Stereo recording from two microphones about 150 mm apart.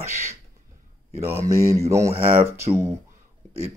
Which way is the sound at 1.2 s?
20° right (ahead or behind).